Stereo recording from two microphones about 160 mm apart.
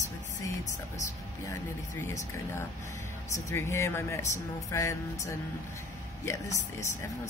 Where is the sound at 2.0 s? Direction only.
15° left (ahead or behind).